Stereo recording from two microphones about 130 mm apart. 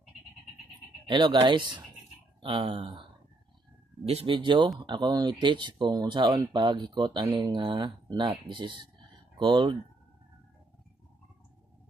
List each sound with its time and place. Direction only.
1.0 s speech: 35° right (ahead or behind)